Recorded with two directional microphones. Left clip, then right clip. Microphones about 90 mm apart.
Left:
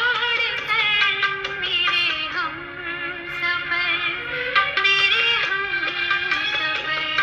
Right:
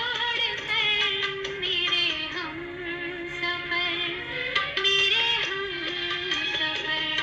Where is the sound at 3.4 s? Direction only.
20° left (ahead or behind).